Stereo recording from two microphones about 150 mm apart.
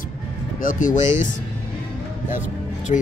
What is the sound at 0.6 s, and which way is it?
Speech, 65° left (ahead or behind).